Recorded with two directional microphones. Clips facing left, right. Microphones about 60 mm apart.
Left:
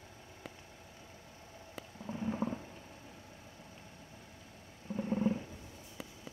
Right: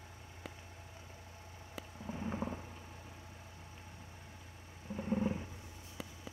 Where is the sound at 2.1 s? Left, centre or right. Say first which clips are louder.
Left 3 dB; centre.